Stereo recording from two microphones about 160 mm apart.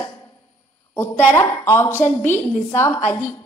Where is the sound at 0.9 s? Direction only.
15° left (ahead or behind).